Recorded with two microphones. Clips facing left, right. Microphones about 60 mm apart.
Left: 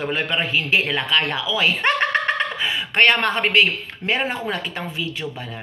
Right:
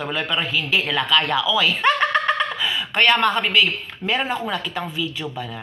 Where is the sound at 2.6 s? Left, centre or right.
Left.